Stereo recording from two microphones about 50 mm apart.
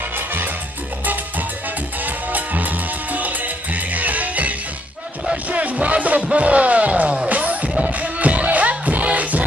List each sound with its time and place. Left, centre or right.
2.0 s music: right